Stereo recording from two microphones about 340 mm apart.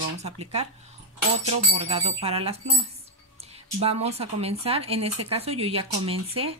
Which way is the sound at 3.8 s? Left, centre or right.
Centre.